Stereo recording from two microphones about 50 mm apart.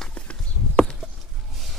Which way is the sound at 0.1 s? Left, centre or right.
Centre.